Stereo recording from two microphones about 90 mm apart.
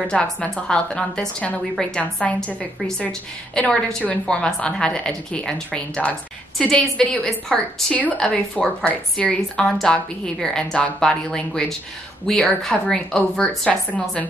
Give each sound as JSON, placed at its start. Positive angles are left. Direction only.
{"t": 0.0, "sound": "a woman's voice", "side_deg": 15}
{"t": 7.9, "sound": "a woman's voice", "side_deg": 15}